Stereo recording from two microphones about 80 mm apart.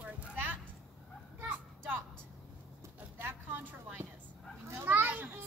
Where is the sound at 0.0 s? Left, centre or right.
Centre.